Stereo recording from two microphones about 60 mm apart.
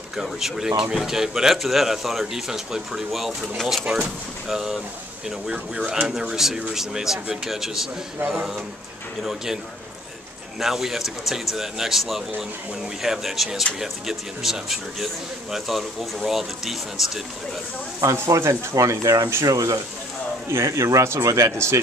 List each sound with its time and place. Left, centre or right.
0.1 s a man's voice: centre
5.5 s a man's voice: centre
10.6 s speech: centre
18.1 s speech: right
18.8 s speech: right
19.4 s speech: right
20.5 s speech: right